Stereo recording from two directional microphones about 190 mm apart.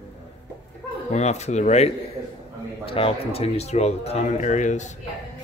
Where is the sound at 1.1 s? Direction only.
35° left (ahead or behind).